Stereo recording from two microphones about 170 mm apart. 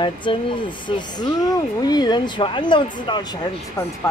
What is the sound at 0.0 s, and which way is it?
Speech, 30° left (ahead or behind).